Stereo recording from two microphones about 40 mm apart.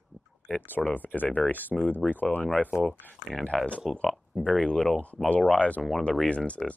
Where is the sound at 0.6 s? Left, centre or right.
Left.